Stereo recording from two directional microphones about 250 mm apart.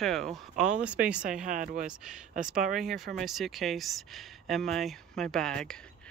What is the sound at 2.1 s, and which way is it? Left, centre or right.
Speech, centre.